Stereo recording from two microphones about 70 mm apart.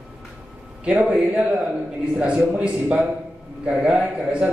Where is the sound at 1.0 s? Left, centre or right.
Centre.